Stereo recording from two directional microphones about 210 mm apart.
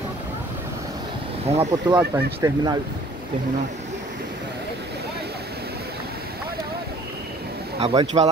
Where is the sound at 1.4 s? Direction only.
30° right (ahead or behind).